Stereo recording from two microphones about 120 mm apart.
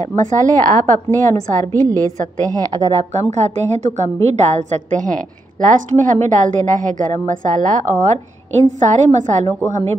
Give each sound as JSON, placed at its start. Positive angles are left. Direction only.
{"t": 0.1, "sound": "a woman's voice", "side_deg": -90}
{"t": 1.8, "sound": "a woman's voice", "side_deg": -30}
{"t": 3.2, "sound": "a woman's voice", "side_deg": -70}